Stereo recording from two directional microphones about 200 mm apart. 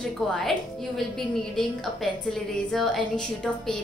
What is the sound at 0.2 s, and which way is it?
A woman's voice, 5° left (ahead or behind).